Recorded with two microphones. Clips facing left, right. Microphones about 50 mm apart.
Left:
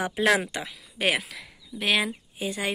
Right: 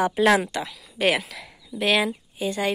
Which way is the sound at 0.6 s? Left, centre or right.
Centre.